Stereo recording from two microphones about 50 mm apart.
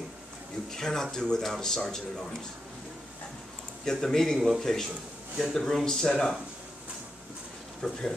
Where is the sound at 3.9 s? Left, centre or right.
Centre.